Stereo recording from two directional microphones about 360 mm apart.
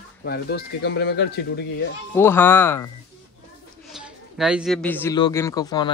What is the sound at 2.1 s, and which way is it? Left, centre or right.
Speech, centre.